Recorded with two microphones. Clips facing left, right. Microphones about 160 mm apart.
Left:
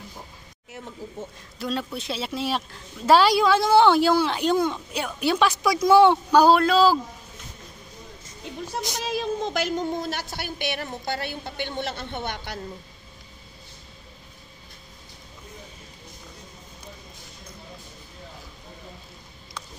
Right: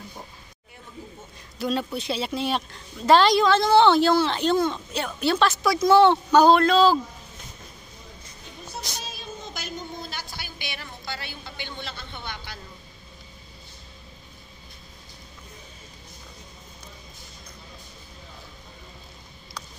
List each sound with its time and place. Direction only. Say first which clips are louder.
1.6 s speech: right 2 dB; centre (ahead or behind)
8.9 s a woman's voice: left 11 dB; 90° left; by 12.5 s 60° left (ahead or behind)